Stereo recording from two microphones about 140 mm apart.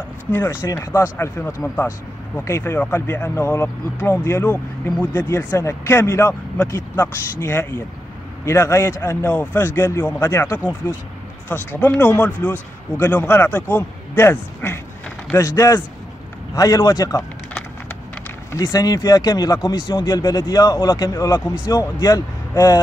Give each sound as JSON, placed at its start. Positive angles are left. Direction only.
{"t": 0.3, "sound": "speech", "side_deg": 15}
{"t": 10.6, "sound": "speech", "side_deg": -10}
{"t": 11.8, "sound": "speech", "side_deg": 10}
{"t": 18.5, "sound": "speech", "side_deg": 25}